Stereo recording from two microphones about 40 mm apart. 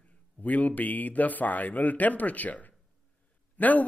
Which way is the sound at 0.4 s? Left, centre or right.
Left.